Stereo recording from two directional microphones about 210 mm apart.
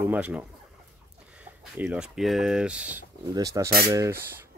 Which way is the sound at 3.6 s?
45° right (ahead or behind).